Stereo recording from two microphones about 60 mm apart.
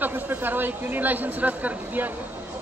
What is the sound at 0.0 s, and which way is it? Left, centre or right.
A man's voice, right.